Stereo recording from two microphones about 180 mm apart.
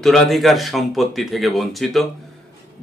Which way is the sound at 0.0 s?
Centre (ahead or behind).